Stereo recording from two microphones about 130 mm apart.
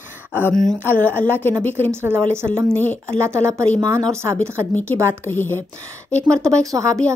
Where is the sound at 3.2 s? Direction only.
20° right (ahead or behind).